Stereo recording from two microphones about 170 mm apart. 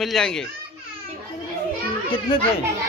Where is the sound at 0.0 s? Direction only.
Centre (ahead or behind).